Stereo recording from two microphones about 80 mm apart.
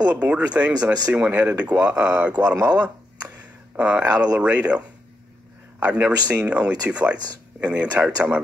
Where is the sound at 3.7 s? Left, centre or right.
Centre.